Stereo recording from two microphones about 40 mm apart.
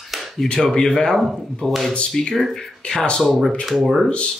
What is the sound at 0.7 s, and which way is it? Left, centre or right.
Speech, centre.